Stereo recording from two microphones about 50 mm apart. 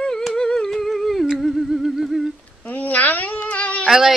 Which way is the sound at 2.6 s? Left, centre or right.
Left.